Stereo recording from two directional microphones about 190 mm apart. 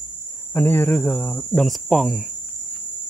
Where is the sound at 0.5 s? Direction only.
10° left (ahead or behind).